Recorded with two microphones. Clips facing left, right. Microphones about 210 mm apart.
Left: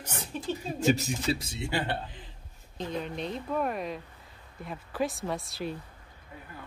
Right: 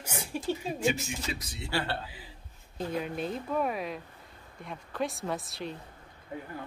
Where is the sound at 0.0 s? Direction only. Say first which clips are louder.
Right 2 dB; 10° right (ahead or behind).